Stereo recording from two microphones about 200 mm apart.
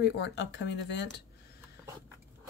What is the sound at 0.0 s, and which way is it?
Speech, 60° left (ahead or behind).